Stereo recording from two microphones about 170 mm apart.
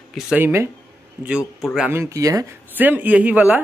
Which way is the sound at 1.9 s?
15° right (ahead or behind).